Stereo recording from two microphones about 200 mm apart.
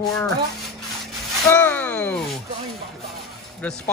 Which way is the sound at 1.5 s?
10° left (ahead or behind).